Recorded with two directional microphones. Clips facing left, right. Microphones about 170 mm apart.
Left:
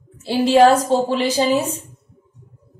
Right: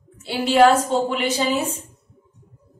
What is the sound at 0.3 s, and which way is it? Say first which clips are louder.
A woman's voice: left 3 dB; 35° left (ahead or behind).